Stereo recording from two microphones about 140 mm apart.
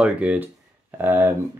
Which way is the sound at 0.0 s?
10° right (ahead or behind).